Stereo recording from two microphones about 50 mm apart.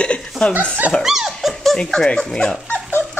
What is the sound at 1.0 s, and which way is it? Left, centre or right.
Dog, centre.